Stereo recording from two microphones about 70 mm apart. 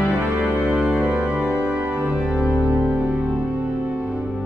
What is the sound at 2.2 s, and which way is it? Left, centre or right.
Music, centre.